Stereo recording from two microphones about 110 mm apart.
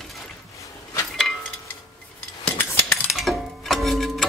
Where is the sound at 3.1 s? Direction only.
Centre (ahead or behind).